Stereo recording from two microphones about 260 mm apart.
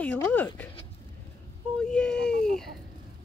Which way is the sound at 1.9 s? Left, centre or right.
Centre.